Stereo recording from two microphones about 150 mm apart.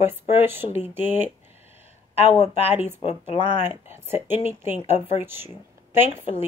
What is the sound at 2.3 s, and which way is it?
Speech, 45° left (ahead or behind).